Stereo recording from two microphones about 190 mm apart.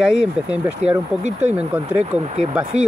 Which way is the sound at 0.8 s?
35° right (ahead or behind).